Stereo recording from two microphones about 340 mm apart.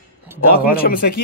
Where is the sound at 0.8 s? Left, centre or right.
Left.